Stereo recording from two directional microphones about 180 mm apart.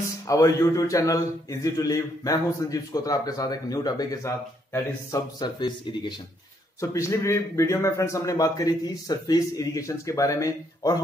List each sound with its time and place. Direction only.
0.3 s a man's voice: 20° left (ahead or behind)